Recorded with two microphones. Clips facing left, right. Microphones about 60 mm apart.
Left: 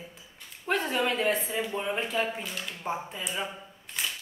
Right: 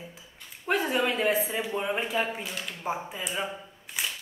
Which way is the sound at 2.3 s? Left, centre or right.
Centre.